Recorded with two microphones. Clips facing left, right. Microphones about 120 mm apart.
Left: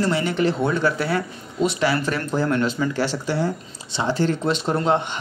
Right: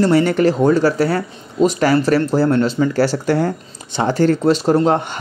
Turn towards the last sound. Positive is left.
turn(degrees=-40)  # may be behind; listen again after turning